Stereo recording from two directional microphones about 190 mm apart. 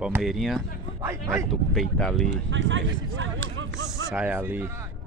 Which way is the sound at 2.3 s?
80° right.